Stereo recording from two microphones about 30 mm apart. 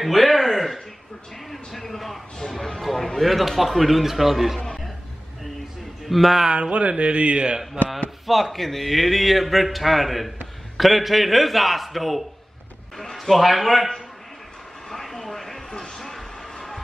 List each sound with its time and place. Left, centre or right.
0.0 s a sound: centre
1.5 s a man's voice: centre
6.0 s speech: centre
6.5 s speech: right
8.3 s a man's voice: centre
15.0 s a sound: centre